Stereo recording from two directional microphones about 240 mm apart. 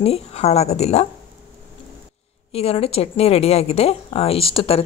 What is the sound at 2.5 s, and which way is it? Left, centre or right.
A woman's voice, left.